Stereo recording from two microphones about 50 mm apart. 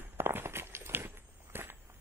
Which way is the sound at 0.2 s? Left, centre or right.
Right.